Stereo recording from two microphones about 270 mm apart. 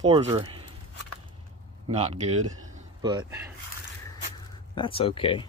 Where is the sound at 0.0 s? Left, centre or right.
Right.